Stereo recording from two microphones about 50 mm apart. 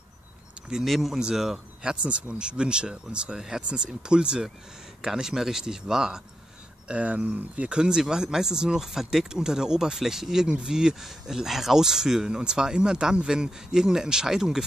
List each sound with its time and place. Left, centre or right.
0.8 s speech: centre
1.8 s speech: centre
6.9 s speech: right; by 14.6 s centre